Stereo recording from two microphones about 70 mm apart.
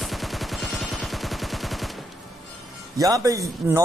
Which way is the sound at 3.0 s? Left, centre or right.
Right.